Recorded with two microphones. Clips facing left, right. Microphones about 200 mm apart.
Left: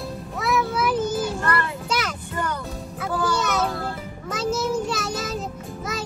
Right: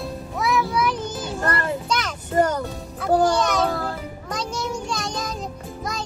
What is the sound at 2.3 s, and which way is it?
Music, 40° right (ahead or behind).